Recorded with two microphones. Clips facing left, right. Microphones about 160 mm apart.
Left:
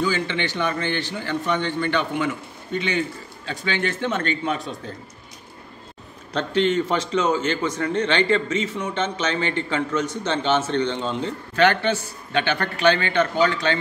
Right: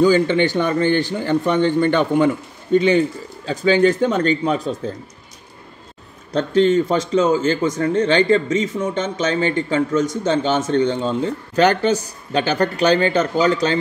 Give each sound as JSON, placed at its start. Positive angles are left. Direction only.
{"t": 0.0, "sound": "a man's voice", "side_deg": -45}
{"t": 6.5, "sound": "a man's voice", "side_deg": -35}